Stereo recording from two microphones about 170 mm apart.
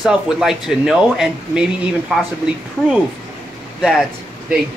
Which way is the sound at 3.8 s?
Centre (ahead or behind).